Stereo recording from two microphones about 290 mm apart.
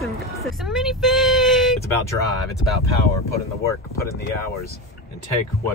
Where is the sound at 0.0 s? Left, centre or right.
Centre.